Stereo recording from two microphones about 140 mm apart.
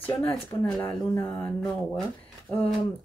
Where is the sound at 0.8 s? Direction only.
15° left (ahead or behind).